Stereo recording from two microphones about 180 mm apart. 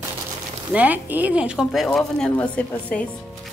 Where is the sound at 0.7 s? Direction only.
10° right (ahead or behind); by 3.1 s 10° left (ahead or behind).